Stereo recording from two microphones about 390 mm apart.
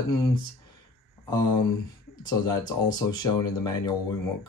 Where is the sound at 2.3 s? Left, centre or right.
Centre.